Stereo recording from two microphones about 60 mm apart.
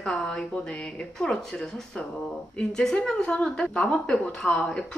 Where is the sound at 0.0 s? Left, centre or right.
Centre.